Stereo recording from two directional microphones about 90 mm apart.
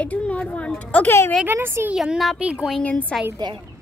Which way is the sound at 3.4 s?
55° right (ahead or behind).